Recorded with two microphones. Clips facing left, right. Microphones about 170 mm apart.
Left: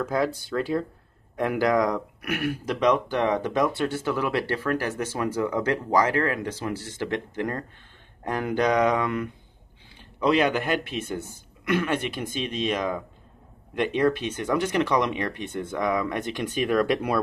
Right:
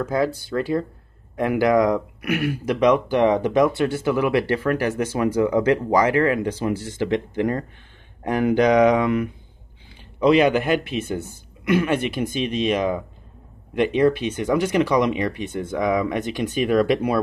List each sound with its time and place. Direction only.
0.6 s speech: centre (ahead or behind)